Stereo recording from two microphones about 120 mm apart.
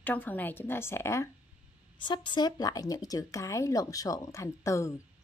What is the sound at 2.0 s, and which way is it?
Speech, 40° left (ahead or behind).